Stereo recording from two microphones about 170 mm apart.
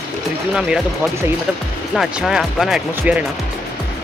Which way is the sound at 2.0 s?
Centre (ahead or behind).